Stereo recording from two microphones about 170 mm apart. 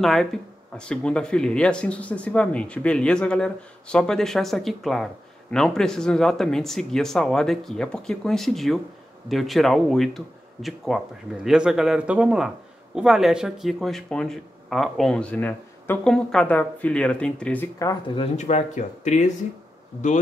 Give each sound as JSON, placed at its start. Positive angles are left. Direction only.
{"t": 0.0, "sound": "speech", "side_deg": 0}
{"t": 18.1, "sound": "speech", "side_deg": 40}